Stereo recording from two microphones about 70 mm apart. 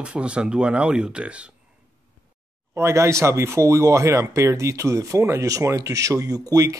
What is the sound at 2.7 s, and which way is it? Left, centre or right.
Speech, right.